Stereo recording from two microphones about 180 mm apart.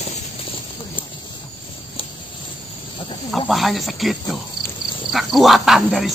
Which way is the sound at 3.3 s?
Centre (ahead or behind).